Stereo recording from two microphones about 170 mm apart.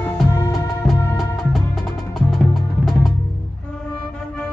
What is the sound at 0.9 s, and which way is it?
Music, centre (ahead or behind).